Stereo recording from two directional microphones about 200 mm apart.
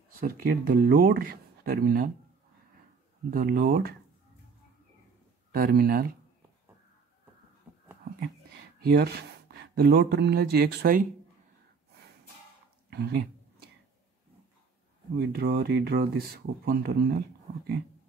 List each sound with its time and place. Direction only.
0.2 s speech: 45° right (ahead or behind)
3.3 s speech: 50° right (ahead or behind)
5.5 s speech: 50° right (ahead or behind)
7.7 s whispering: 5° right (ahead or behind)
8.8 s speech: 55° right (ahead or behind)
12.9 s a sound: 55° right (ahead or behind)
15.1 s speech: 50° right (ahead or behind)